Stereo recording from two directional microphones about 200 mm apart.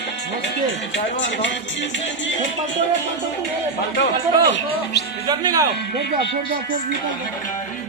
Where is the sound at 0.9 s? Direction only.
65° left (ahead or behind).